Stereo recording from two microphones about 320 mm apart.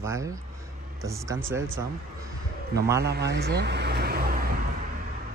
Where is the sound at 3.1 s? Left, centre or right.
Right.